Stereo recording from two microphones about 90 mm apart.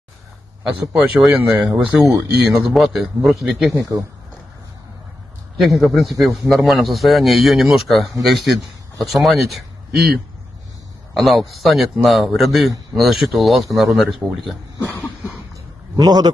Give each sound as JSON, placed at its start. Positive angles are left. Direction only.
{"t": 0.9, "sound": "a man's voice", "side_deg": -5}
{"t": 5.6, "sound": "a man's voice", "side_deg": 0}
{"t": 11.1, "sound": "a man's voice", "side_deg": 0}
{"t": 14.8, "sound": "cough", "side_deg": 25}
{"t": 15.5, "sound": "a sound", "side_deg": -50}